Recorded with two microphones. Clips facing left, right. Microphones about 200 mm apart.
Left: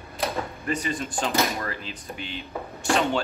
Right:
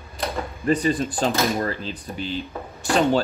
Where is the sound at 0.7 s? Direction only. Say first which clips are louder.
Right 10 dB; 35° right (ahead or behind).